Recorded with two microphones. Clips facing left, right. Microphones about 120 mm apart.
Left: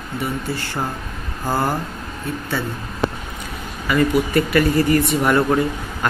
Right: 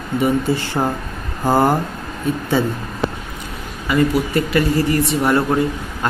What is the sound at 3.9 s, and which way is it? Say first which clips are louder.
Speech: right 1 dB; 25° right (ahead or behind).